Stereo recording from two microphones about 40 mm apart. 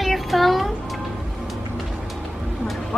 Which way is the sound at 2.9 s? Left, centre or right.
Left.